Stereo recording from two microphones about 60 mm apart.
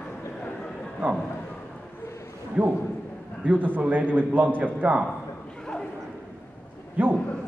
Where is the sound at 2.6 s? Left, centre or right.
Right.